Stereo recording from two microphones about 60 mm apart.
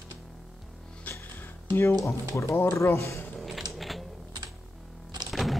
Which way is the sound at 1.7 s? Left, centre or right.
Left.